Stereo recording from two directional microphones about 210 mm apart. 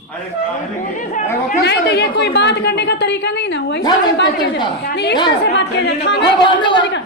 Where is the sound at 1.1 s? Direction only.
35° left (ahead or behind).